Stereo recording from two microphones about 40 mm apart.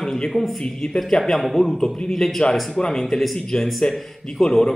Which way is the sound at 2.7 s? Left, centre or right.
Centre.